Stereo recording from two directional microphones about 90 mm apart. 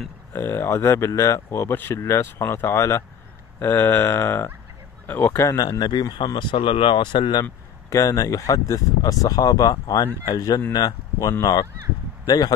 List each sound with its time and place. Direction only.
0.3 s speech: 25° left (ahead or behind)
5.4 s speech: 40° left (ahead or behind); by 7.4 s 60° left (ahead or behind)
7.9 s speech: 40° left (ahead or behind)